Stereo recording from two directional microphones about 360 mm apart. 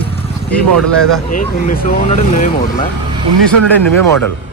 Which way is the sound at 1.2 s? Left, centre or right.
Left.